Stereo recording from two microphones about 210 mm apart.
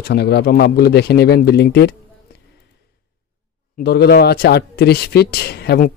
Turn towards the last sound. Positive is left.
turn(degrees=50)  # may be behind; listen again after turning